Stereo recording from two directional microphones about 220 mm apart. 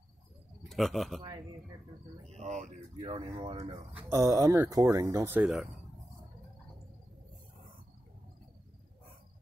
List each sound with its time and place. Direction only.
0.7 s speech: centre (ahead or behind)
2.3 s speech: 30° right (ahead or behind)
3.9 s speech: 15° right (ahead or behind)